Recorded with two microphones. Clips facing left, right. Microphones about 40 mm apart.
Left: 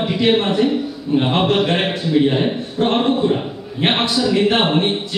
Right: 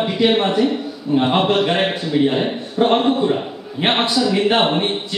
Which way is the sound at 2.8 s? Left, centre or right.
Centre.